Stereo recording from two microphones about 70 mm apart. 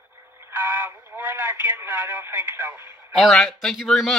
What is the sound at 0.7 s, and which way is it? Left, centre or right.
Radio, right.